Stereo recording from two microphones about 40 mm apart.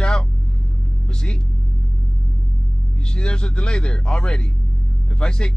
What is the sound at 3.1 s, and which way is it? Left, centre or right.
Speech, left.